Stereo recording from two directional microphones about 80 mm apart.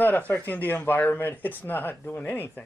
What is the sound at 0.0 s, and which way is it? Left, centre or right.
Speech, centre.